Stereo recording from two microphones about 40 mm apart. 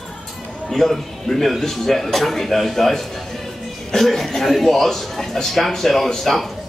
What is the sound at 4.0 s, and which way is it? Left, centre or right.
A man's voice, centre.